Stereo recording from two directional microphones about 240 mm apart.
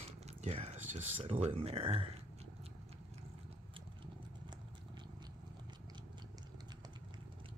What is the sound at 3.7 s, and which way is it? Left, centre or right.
Vehicle, centre.